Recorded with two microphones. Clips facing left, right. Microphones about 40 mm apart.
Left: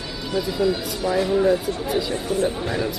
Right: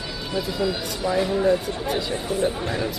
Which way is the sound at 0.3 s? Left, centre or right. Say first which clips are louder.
Left 3 dB; centre.